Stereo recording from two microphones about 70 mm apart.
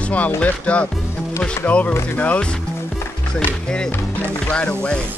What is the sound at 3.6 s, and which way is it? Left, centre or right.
Speech, centre.